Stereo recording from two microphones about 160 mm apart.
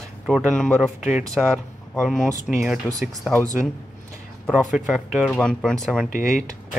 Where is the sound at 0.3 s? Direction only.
5° right (ahead or behind).